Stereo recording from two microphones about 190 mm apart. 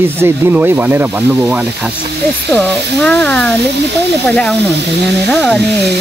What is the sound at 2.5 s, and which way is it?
Speech, 10° left (ahead or behind).